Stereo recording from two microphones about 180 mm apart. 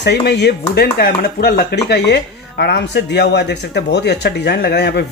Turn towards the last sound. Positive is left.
turn(degrees=65)  # may be behind; listen again after turning